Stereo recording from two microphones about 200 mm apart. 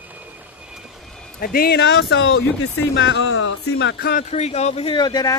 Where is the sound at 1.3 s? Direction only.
50° left (ahead or behind).